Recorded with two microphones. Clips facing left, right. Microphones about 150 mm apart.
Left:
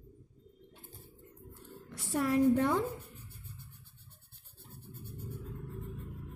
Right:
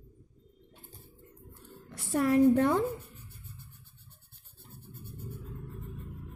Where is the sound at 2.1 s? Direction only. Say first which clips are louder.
Right 4 dB; 55° right (ahead or behind).